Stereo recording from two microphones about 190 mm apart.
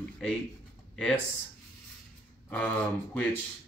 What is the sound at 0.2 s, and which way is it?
Speech, centre (ahead or behind).